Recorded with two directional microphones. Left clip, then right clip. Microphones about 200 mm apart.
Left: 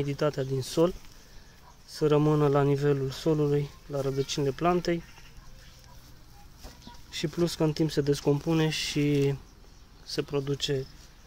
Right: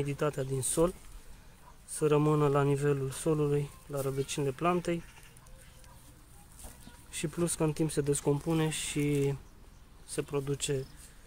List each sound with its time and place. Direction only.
0.0 s speech: 10° left (ahead or behind)
2.0 s speech: 10° left (ahead or behind)
7.1 s speech: 10° left (ahead or behind)